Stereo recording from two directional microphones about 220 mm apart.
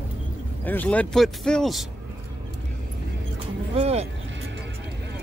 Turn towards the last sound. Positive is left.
turn(degrees=-30)  # may be behind; listen again after turning